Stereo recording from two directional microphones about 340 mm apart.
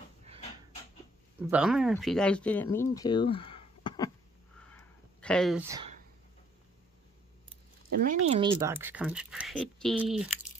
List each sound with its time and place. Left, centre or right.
1.5 s speech: centre
4.7 s a sound: centre
7.9 s speech: right
8.3 s speech: centre